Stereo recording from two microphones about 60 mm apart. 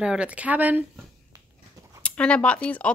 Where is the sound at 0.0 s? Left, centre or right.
Centre.